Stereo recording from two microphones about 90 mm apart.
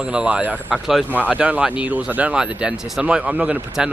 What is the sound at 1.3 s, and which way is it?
Speech, 15° right (ahead or behind).